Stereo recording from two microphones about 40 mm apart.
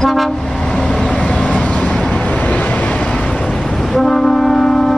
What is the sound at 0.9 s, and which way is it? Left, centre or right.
Vehicle, left.